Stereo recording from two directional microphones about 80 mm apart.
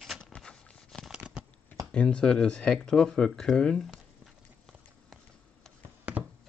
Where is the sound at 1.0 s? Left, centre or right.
Centre.